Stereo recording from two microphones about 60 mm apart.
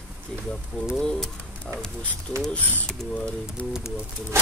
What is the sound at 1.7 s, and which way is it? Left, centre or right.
Speech, right.